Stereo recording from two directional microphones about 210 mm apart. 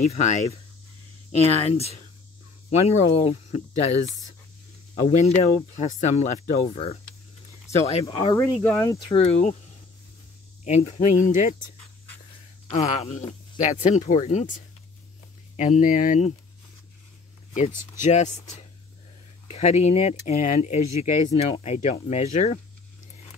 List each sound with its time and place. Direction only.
0.0 s speech: 35° left (ahead or behind)
8.0 s speech: 25° left (ahead or behind)
8.4 s speech: 15° left (ahead or behind)
9.1 s speech: 30° left (ahead or behind)
10.6 s speech: 30° left (ahead or behind)
12.6 s speech: 30° left (ahead or behind)
18.0 s speech: 35° left (ahead or behind)